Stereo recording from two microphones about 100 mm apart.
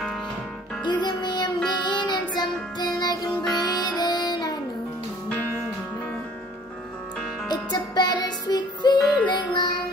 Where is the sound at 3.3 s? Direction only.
5° left (ahead or behind).